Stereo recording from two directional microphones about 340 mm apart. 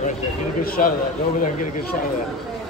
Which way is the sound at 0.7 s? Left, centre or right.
Left.